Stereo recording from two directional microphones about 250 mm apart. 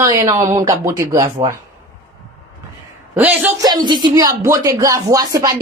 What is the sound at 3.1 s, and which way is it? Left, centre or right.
A woman's voice, centre.